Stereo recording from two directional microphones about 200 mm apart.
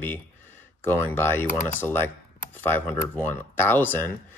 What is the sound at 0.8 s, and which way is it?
Speech, 10° left (ahead or behind).